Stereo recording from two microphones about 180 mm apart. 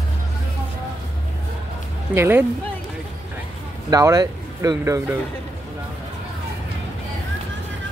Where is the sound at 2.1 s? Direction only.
10° right (ahead or behind).